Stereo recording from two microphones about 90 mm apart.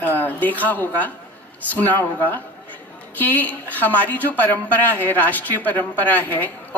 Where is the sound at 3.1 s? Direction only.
20° left (ahead or behind).